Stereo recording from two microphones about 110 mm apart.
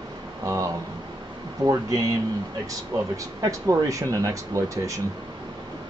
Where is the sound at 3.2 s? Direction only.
30° right (ahead or behind).